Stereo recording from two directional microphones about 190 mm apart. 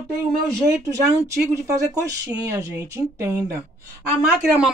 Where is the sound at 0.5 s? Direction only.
20° right (ahead or behind).